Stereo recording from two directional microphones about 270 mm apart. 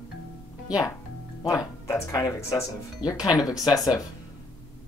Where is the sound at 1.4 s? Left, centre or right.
Centre.